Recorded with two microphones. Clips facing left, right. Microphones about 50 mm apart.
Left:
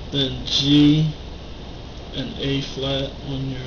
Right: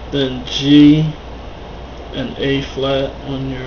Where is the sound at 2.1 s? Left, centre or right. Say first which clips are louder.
Right 7 dB; right.